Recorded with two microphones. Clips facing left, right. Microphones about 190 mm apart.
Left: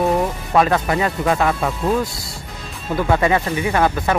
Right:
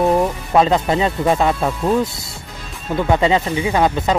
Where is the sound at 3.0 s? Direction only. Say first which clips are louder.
Right 1 dB; 20° right (ahead or behind).